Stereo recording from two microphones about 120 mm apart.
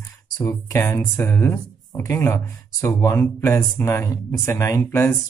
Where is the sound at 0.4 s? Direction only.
25° left (ahead or behind).